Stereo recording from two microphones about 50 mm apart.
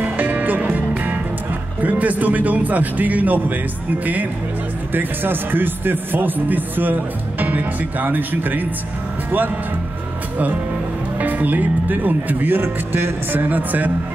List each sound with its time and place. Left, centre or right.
0.0 s music: right
1.8 s a man's voice: right
11.1 s a man's voice: right